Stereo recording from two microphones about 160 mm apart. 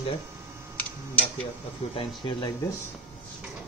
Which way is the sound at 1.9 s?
35° left (ahead or behind).